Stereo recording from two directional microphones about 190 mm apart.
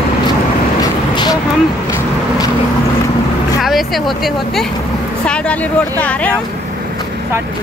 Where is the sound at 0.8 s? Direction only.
20° left (ahead or behind).